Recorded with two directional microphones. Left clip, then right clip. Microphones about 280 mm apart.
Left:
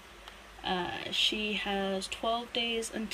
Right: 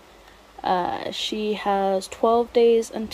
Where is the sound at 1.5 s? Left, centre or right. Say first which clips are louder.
Right 11 dB; right.